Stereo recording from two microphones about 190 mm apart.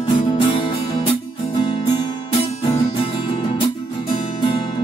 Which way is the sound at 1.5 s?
30° left (ahead or behind).